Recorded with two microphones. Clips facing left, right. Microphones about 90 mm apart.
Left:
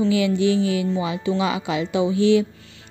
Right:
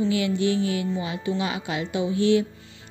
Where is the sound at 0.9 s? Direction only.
90° left.